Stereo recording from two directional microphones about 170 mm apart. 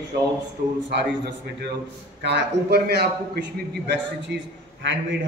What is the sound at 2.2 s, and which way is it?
A man's voice, 80° right.